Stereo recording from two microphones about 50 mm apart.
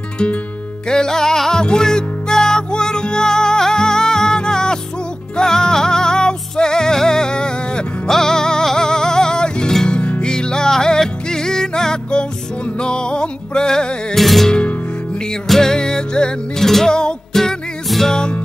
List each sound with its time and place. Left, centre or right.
0.8 s music: centre
14.1 s music: centre
14.5 s music: left
15.4 s music: centre
16.6 s music: centre
16.9 s music: centre
17.4 s music: centre